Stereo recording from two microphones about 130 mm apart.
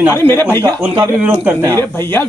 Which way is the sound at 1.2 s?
15° right (ahead or behind).